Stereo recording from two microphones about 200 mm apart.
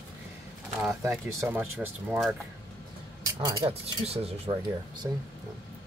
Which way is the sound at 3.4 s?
15° right (ahead or behind).